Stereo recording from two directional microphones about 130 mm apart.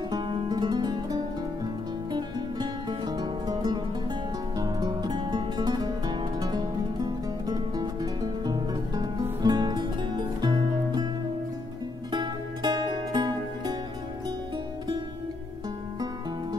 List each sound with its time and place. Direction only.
0.1 s music: 35° right (ahead or behind)
12.1 s music: 35° right (ahead or behind)